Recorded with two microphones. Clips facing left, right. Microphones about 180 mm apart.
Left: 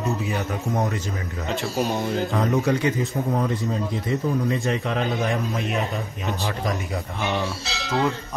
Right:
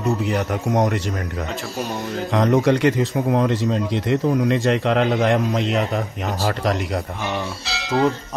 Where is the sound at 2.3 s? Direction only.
70° right (ahead or behind).